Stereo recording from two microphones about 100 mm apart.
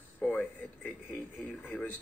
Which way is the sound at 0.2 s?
15° left (ahead or behind).